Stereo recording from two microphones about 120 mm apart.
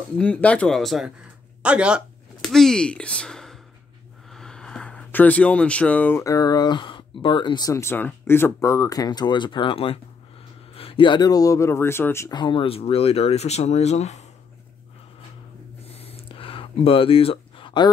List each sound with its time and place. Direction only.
0.2 s speech: 10° left (ahead or behind); by 2.0 s 10° right (ahead or behind)
2.4 s speech: 5° left (ahead or behind)
4.3 s a sound: 5° left (ahead or behind)
6.2 s speech: 30° left (ahead or behind)
7.7 s speech: 20° left (ahead or behind)
12.3 s speech: 40° left (ahead or behind); by 14.2 s 70° left (ahead or behind)
15.8 s a sound: 55° left (ahead or behind)